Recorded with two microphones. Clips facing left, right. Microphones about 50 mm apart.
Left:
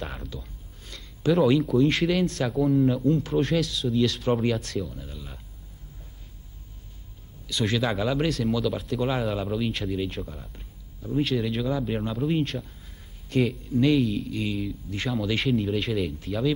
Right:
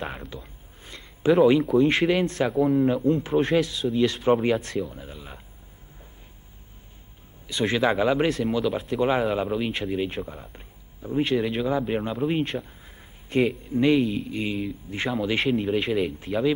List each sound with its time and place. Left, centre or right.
0.0 s a sound: right
1.7 s speech: centre
7.4 s speech: right